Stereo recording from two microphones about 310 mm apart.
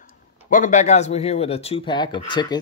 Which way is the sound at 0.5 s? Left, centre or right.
Left.